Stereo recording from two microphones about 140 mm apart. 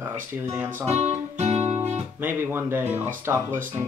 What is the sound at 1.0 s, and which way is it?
Guitar, 50° right (ahead or behind).